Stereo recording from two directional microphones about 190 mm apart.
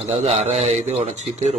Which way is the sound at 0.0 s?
35° right (ahead or behind).